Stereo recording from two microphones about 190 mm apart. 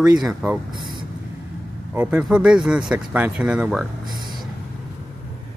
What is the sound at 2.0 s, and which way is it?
Speech, 5° right (ahead or behind).